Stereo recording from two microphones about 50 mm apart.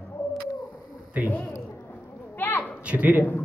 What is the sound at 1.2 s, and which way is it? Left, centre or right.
Speech, right.